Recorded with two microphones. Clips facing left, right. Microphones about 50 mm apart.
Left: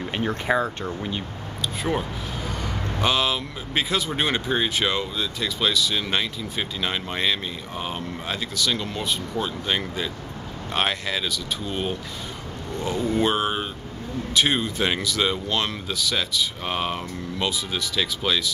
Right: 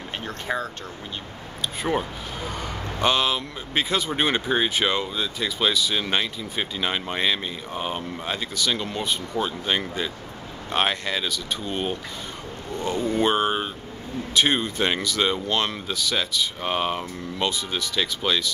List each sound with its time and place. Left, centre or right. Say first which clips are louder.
0.1 s speech: left 5 dB; left
1.8 s speech: right 1 dB; centre